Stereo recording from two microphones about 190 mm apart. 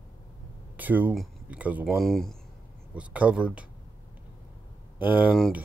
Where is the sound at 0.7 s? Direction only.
10° right (ahead or behind).